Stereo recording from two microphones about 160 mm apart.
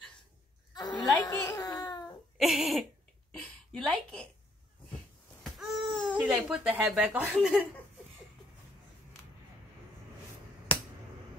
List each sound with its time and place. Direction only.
0.7 s a sound: 25° left (ahead or behind)
1.3 s a child's voice: 10° left (ahead or behind)
1.6 s babbling: 25° left (ahead or behind)
2.3 s a sound: centre (ahead or behind)
5.4 s babbling: 5° left (ahead or behind)
7.3 s speech: 5° right (ahead or behind)